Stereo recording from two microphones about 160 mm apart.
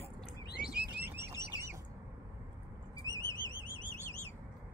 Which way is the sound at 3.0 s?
20° left (ahead or behind).